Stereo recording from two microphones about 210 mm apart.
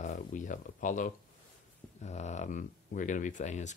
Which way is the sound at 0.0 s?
35° left (ahead or behind).